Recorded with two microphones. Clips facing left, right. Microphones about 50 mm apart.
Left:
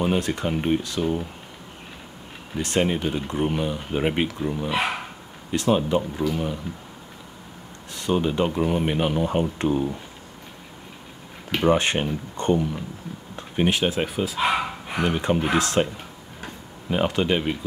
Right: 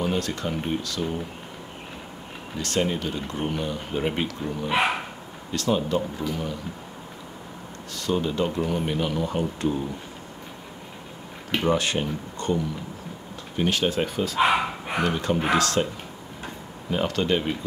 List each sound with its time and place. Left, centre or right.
0.0 s speech: left
2.5 s speech: left
4.6 s speech: centre
5.5 s speech: left
8.0 s speech: left
11.6 s speech: left
13.6 s speech: centre
14.5 s bow-wow: centre
15.0 s speech: left
16.9 s speech: centre